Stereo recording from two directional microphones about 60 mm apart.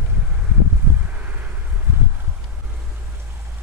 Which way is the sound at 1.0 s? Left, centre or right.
Right.